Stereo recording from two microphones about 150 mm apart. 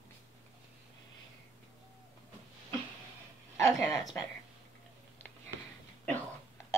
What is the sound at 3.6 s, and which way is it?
Speech, 20° left (ahead or behind).